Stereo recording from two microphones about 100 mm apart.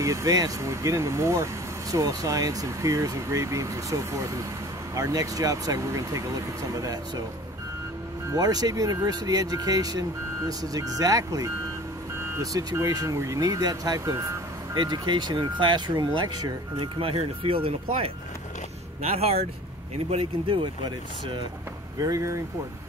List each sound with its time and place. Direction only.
0.0 s speech: 35° right (ahead or behind)
8.4 s speech: 40° right (ahead or behind)
14.8 s speech: 50° right (ahead or behind); by 18.1 s 75° right (ahead or behind)
19.0 s speech: 90° right
20.1 s speech: 75° right (ahead or behind)
22.0 s speech: 35° right (ahead or behind)